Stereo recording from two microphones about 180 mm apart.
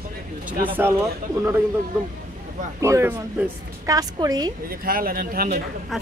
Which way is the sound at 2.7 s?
15° right (ahead or behind).